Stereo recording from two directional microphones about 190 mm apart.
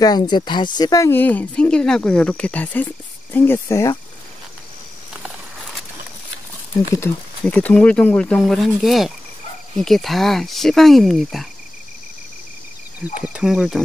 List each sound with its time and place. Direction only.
0.0 s speech: 20° left (ahead or behind)
7.0 s speech: 10° left (ahead or behind)
13.2 s speech: 5° right (ahead or behind)